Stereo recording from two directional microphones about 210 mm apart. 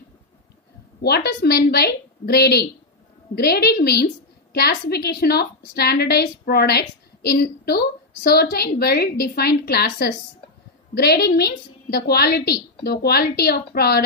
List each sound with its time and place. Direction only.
1.0 s a woman's voice: 50° left (ahead or behind)